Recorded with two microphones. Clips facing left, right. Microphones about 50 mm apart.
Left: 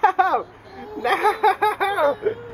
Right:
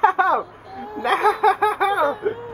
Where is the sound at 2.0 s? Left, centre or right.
Right.